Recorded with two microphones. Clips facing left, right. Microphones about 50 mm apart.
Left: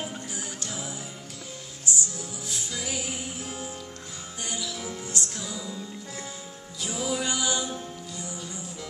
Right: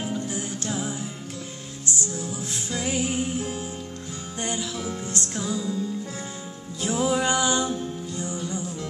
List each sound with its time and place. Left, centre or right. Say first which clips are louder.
0.3 s music: right 7 dB; right
2.0 s music: right 4 dB; right